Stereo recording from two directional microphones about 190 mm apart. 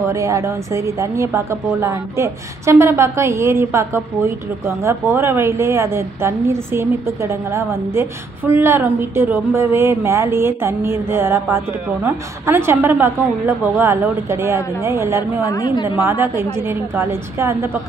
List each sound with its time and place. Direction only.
0.0 s a woman's voice: 15° right (ahead or behind)
15.4 s a woman's voice: 20° left (ahead or behind)
16.0 s a woman's voice: 10° right (ahead or behind)